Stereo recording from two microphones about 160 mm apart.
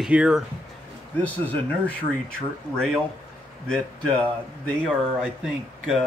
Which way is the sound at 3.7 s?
5° left (ahead or behind).